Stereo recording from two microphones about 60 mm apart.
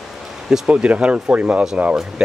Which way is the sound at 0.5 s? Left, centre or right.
Centre.